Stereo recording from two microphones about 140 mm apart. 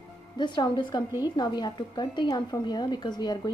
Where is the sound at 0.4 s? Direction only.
30° left (ahead or behind).